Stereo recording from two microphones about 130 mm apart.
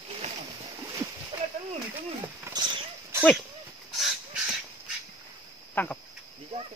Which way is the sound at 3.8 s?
Centre (ahead or behind).